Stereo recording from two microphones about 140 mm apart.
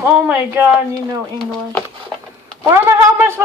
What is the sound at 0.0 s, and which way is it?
Speech, 15° right (ahead or behind).